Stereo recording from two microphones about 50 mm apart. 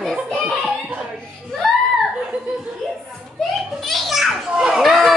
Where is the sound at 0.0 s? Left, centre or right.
Centre.